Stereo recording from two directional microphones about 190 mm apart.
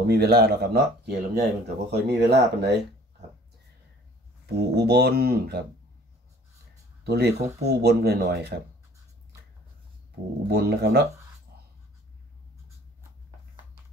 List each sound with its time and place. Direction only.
0.0 s speech: 55° right (ahead or behind)
4.5 s speech: 60° right (ahead or behind)
7.1 s speech: 55° right (ahead or behind)
10.5 s speech: 55° right (ahead or behind)